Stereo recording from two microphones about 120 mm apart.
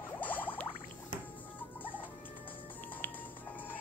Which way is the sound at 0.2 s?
15° left (ahead or behind).